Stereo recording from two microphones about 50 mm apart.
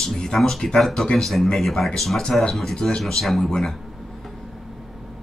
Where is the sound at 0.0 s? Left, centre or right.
Centre.